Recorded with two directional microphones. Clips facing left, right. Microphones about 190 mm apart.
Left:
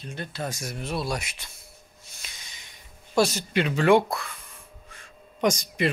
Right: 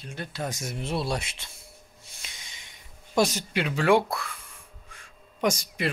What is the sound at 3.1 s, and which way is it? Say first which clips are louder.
Speech: left 2 dB; 15° right (ahead or behind).